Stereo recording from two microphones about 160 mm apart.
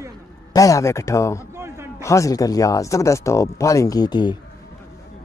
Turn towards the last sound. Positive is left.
turn(degrees=25)  # may be behind; listen again after turning